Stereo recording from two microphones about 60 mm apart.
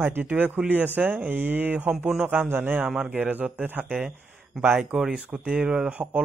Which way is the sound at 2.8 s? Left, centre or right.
Centre.